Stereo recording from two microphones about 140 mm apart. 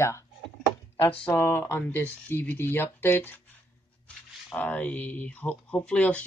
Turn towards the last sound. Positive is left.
turn(degrees=10)  # may be behind; listen again after turning